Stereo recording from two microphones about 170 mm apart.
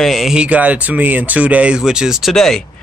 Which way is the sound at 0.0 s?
Centre (ahead or behind).